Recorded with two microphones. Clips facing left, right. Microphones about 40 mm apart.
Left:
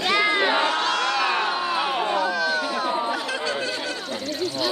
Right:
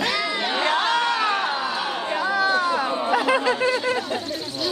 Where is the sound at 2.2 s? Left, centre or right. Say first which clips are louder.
Right 2 dB; right.